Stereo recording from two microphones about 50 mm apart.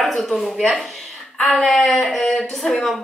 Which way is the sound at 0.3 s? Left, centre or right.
Centre.